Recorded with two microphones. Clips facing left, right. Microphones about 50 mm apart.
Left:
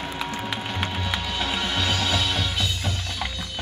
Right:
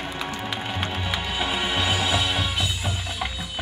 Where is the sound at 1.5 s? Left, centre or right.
Centre.